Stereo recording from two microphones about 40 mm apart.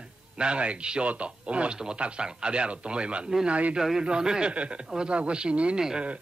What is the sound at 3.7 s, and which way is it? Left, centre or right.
A man's voice, centre.